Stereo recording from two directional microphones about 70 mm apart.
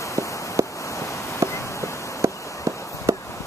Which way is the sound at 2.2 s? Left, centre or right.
Right.